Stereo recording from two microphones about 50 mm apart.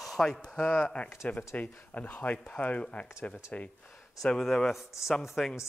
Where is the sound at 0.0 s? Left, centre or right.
Centre.